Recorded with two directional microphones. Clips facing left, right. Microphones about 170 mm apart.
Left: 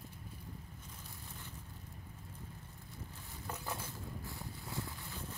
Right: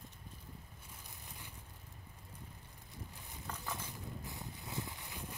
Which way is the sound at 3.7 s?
20° right (ahead or behind).